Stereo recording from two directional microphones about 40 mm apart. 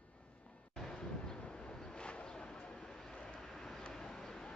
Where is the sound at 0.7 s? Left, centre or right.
Centre.